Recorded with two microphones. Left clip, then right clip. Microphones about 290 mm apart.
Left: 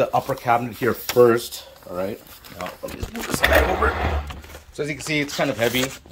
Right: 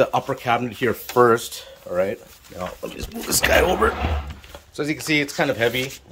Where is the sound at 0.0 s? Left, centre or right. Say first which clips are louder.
Right 1 dB; centre.